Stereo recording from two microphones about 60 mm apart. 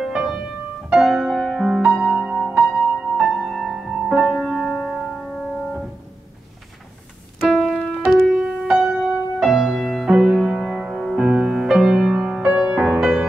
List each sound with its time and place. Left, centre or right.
0.0 s music: centre
2.1 s music: centre
3.4 s music: centre
7.3 s music: centre
12.7 s music: centre